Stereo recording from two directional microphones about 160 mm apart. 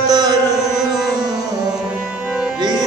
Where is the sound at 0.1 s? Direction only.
25° right (ahead or behind).